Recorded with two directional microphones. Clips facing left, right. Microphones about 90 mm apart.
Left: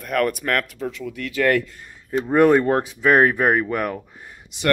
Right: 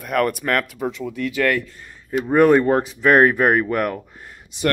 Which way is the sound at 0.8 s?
20° right (ahead or behind).